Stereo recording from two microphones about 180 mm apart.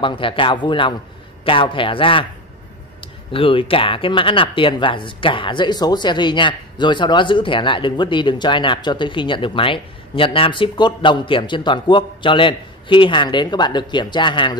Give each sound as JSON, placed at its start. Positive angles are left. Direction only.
{"t": 0.0, "sound": "speech", "side_deg": 30}
{"t": 3.3, "sound": "speech", "side_deg": 30}